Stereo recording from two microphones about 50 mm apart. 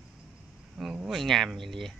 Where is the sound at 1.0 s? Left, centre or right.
Centre.